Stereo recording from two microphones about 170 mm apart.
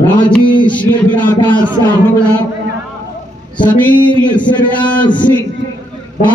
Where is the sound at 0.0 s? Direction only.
10° left (ahead or behind).